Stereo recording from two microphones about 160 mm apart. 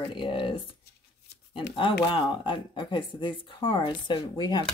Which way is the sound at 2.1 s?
30° left (ahead or behind).